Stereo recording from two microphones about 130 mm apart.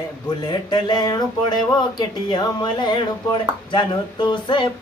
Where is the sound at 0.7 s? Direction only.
30° left (ahead or behind).